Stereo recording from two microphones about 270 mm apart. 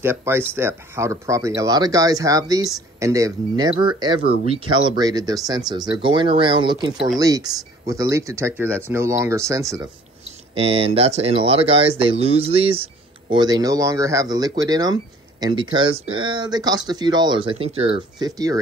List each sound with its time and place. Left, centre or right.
0.0 s speech: centre